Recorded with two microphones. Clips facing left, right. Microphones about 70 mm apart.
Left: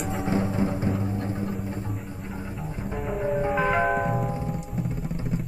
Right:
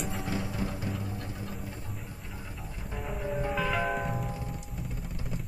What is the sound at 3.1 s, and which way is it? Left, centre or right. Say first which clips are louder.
Music: left 7 dB; left.